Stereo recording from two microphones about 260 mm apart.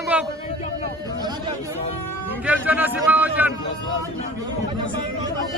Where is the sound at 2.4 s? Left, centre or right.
Centre.